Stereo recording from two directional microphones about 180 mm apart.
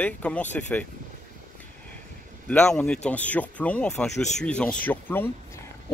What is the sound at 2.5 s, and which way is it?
Speech, 5° left (ahead or behind).